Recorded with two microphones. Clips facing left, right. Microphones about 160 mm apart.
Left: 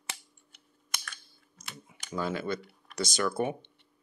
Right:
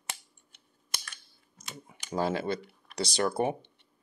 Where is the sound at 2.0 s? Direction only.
30° right (ahead or behind).